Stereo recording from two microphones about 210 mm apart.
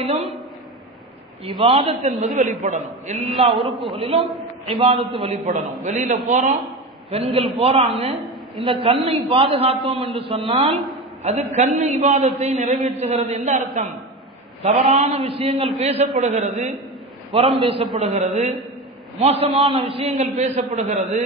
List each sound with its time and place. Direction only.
0.0 s a man's voice: 30° right (ahead or behind)
1.4 s a man's voice: 30° right (ahead or behind)
3.5 s a man's voice: centre (ahead or behind)
3.8 s a man's voice: 25° right (ahead or behind)
6.6 s a sound: 30° right (ahead or behind)
7.6 s a man's voice: 30° right (ahead or behind)
8.2 s a woman's voice: centre (ahead or behind)
9.3 s a man's voice: 25° right (ahead or behind)
14.6 s a man's voice: 30° right (ahead or behind)